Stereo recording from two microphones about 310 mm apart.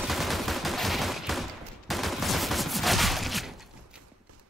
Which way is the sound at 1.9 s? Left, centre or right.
Centre.